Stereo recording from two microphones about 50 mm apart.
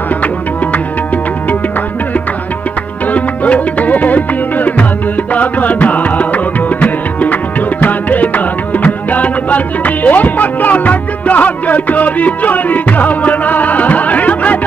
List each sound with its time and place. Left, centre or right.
3.1 s music: left